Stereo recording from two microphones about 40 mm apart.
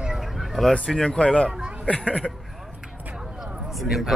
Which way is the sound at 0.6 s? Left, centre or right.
Centre.